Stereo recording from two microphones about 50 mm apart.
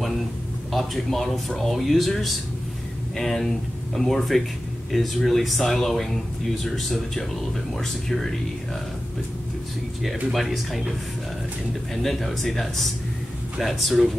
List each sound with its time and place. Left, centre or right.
0.7 s speech: centre
10.0 s speech: centre
11.9 s speech: centre